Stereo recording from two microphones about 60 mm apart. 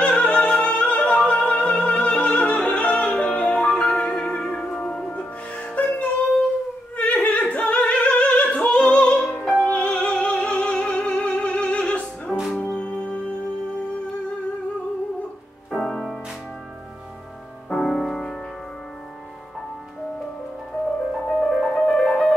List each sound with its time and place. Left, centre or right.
0.0 s music: centre
5.6 s music: left
7.0 s opera: left
9.3 s music: centre
9.7 s opera: left
12.5 s music: centre
15.7 s music: centre
17.6 s music: centre
21.3 s music: centre